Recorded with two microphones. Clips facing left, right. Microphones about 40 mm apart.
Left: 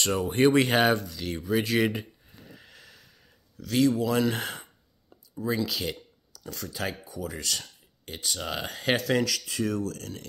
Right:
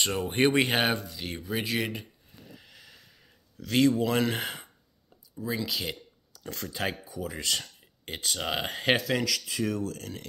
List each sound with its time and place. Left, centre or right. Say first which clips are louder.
0.0 s speech: left 2 dB; centre
1.8 s speech: left 6 dB; centre
2.5 s a sound: left 1 dB; centre
3.5 s speech: even; right
4.3 s speech: left 1 dB; centre
5.7 s speech: left 1 dB; centre
6.5 s speech: right 1 dB; centre
8.0 s speech: right 1 dB; right
9.0 s speech: left 3 dB; centre
9.7 s speech: left 1 dB; centre